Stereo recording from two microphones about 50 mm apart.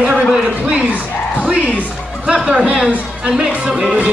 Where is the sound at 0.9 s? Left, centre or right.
Right.